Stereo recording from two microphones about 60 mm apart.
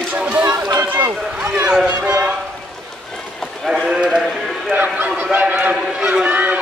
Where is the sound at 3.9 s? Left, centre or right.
Centre.